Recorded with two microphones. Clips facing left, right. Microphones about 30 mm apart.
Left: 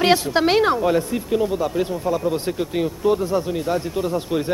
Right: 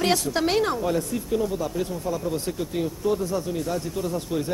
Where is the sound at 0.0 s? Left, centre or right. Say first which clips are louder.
Left 6 dB; left.